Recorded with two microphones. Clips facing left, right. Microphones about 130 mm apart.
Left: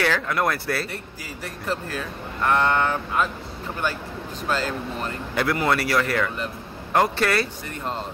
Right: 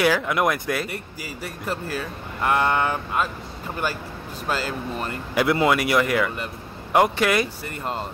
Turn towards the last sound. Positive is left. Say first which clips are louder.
# right 1 dB
turn(degrees=-10)  # may be behind; listen again after turning